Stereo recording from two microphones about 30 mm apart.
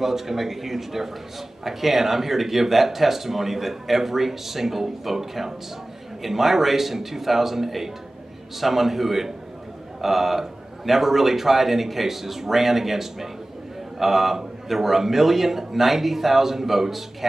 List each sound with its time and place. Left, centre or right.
0.0 s speech: centre